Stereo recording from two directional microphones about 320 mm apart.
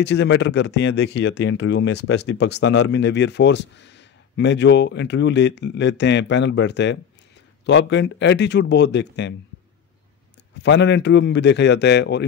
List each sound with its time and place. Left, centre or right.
0.0 s speech: left
10.6 s speech: left